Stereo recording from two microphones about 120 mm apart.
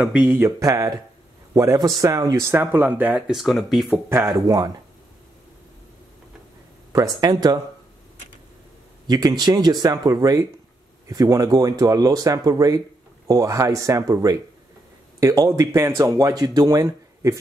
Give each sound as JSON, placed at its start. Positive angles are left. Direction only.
{"t": 0.0, "sound": "speech", "side_deg": -10}
{"t": 0.5, "sound": "speech", "side_deg": -25}
{"t": 3.3, "sound": "speech", "side_deg": 0}
{"t": 3.9, "sound": "speech", "side_deg": -20}
{"t": 4.3, "sound": "speech", "side_deg": -30}
{"t": 6.9, "sound": "speech", "side_deg": -30}
{"t": 9.0, "sound": "speech", "side_deg": -35}